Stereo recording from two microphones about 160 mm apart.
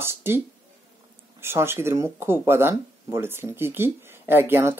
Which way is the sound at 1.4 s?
15° right (ahead or behind).